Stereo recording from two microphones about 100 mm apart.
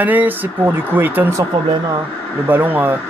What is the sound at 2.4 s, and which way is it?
Speech, 20° right (ahead or behind).